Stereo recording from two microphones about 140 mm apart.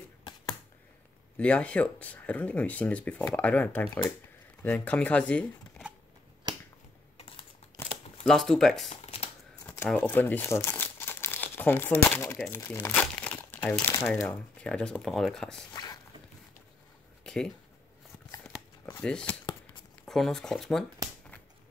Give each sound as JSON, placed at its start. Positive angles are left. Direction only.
{"t": 1.3, "sound": "speech", "side_deg": 10}
{"t": 6.5, "sound": "finger snapping", "side_deg": -30}
{"t": 7.2, "sound": "typing", "side_deg": 40}
{"t": 8.3, "sound": "speech", "side_deg": 5}
{"t": 8.8, "sound": "computer keyboard", "side_deg": 50}
{"t": 9.9, "sound": "speech", "side_deg": 15}
{"t": 13.0, "sound": "crumpling", "side_deg": 10}
{"t": 14.2, "sound": "speech", "side_deg": 10}
{"t": 15.7, "sound": "a sound", "side_deg": 30}
{"t": 17.2, "sound": "a sound", "side_deg": 5}
{"t": 18.9, "sound": "speech", "side_deg": 10}